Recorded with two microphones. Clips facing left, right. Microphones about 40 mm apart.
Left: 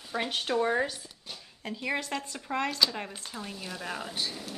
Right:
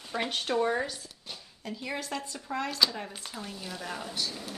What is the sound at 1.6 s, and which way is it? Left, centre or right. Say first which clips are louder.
Speech: left 4 dB; left.